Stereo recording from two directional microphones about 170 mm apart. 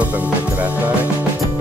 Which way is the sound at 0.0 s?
10° right (ahead or behind).